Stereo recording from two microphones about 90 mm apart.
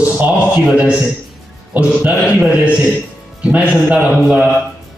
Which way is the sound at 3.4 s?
15° right (ahead or behind).